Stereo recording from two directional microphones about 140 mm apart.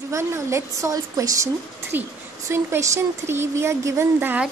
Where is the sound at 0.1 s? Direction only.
20° right (ahead or behind).